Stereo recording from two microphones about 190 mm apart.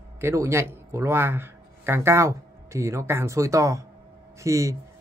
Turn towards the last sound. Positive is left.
turn(degrees=-15)  # may be behind; listen again after turning